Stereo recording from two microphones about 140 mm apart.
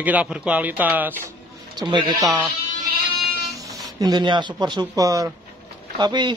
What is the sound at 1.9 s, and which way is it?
Speech, 35° right (ahead or behind).